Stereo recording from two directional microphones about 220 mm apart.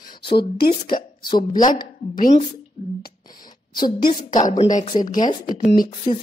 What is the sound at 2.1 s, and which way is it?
Speech, 35° left (ahead or behind).